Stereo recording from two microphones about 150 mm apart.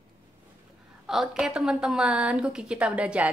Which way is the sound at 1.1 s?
5° right (ahead or behind).